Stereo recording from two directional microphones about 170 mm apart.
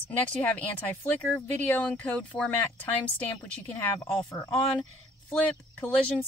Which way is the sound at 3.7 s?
10° left (ahead or behind).